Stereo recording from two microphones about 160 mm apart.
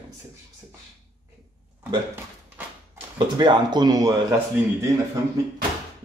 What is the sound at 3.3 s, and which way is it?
Speech, 25° right (ahead or behind).